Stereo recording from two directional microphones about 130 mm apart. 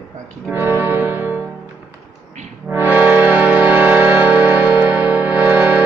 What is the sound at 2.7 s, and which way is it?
Music, 15° right (ahead or behind).